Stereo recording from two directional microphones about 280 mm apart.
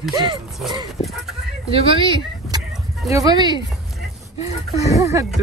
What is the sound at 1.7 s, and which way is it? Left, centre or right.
Speech, centre.